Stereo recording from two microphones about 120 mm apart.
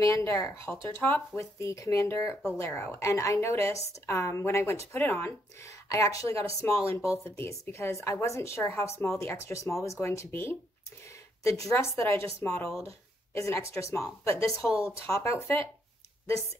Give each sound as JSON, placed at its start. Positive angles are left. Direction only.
{"t": 0.0, "sound": "speech", "side_deg": 25}